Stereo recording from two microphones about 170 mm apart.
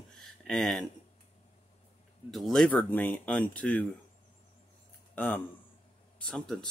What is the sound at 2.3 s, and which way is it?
Speech, centre (ahead or behind).